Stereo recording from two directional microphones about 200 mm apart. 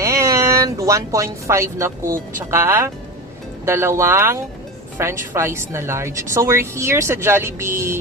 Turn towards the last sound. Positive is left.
turn(degrees=-15)  # may be behind; listen again after turning